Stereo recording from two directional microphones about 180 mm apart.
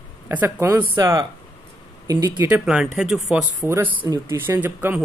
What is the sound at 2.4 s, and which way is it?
Speech, 5° right (ahead or behind).